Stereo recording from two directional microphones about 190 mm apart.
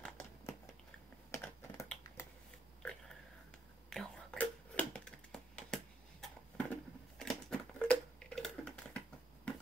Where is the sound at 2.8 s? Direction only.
5° left (ahead or behind).